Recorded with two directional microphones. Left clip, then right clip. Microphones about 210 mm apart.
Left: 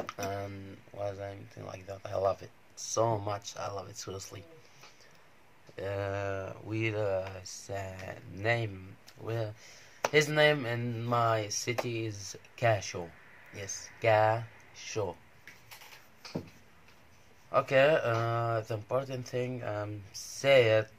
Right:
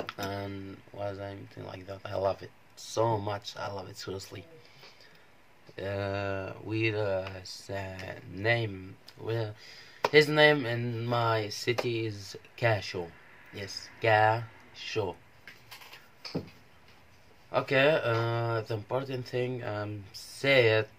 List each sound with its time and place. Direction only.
0.3 s speech: centre (ahead or behind)
5.8 s speech: centre (ahead or behind)
17.5 s speech: centre (ahead or behind)